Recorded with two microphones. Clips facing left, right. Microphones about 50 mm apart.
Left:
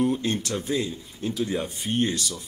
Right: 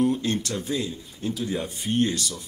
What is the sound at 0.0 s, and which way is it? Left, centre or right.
Speech, centre.